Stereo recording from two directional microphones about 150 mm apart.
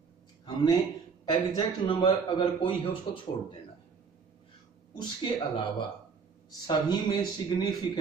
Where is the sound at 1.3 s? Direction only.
25° left (ahead or behind).